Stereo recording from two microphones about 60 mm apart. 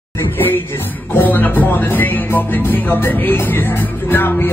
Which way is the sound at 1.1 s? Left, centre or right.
Left.